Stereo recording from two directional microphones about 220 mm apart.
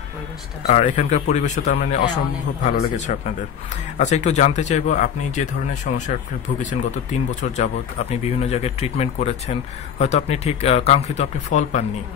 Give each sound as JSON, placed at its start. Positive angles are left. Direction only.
{"t": 0.7, "sound": "speech", "side_deg": 30}